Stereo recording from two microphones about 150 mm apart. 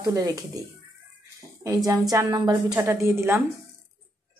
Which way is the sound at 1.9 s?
25° right (ahead or behind).